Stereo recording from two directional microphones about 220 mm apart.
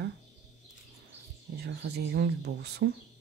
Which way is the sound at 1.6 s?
50° right (ahead or behind).